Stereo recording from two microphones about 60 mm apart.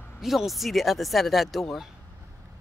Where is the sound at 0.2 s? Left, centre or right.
Centre.